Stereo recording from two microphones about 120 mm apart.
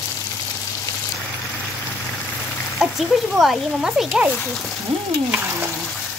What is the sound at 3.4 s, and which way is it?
Speech, centre (ahead or behind).